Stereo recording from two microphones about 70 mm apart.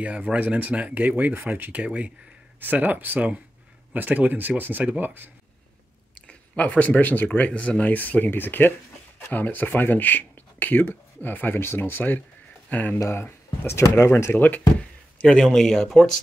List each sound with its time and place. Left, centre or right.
0.0 s speech: centre
6.2 s speech: centre
13.1 s speech: left
14.8 s a sound: centre
15.3 s speech: centre